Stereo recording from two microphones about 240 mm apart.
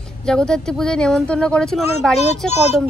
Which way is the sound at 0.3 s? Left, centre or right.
Centre.